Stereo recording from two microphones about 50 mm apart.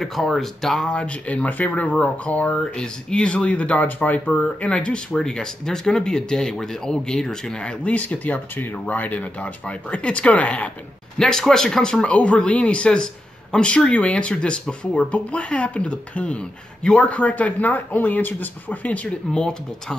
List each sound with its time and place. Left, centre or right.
0.0 s speech: centre
0.7 s speech: left
2.5 s speech: centre
7.9 s speech: left
11.1 s speech: centre; by 19.1 s left
19.3 s speech: centre